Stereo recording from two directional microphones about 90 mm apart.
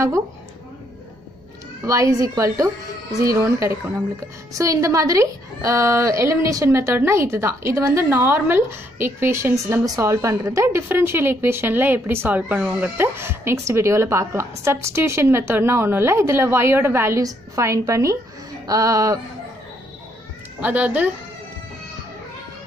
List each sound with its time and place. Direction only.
1.9 s a woman's voice: 40° right (ahead or behind)
20.6 s speech: 15° right (ahead or behind)